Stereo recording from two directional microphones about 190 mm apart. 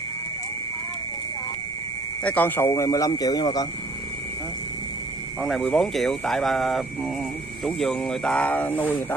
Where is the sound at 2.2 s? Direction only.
10° left (ahead or behind).